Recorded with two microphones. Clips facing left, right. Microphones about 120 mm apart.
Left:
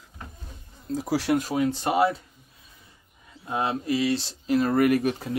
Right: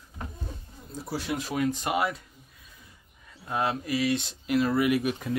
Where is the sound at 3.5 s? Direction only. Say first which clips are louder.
Left 2 dB; 25° left (ahead or behind).